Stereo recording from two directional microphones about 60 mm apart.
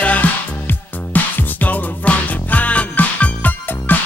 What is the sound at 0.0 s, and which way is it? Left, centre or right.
Music, left.